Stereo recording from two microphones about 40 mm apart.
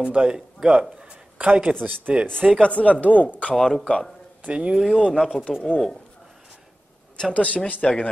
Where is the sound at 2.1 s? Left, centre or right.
Right.